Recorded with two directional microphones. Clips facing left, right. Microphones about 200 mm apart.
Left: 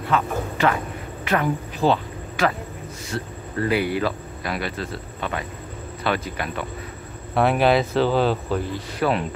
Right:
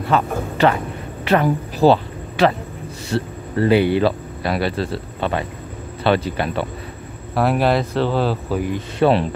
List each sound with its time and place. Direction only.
0.1 s a man's voice: 30° right (ahead or behind)
7.3 s speech: centre (ahead or behind)